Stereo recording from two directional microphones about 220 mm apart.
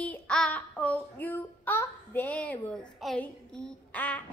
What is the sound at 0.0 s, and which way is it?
A child's voice, 5° left (ahead or behind).